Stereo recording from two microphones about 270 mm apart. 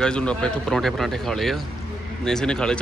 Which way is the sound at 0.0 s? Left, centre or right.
Centre.